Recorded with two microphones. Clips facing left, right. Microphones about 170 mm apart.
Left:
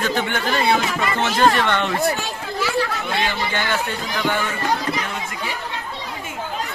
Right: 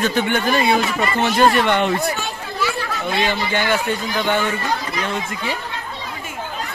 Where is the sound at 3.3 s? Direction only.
15° right (ahead or behind).